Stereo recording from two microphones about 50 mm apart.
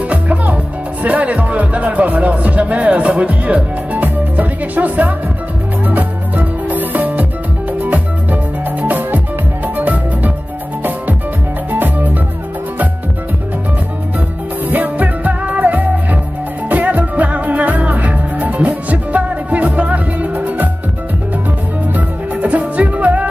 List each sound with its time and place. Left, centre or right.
0.1 s music: right
1.0 s speech: right
5.9 s music: right
11.7 s music: right
14.6 s music: right
21.9 s music: right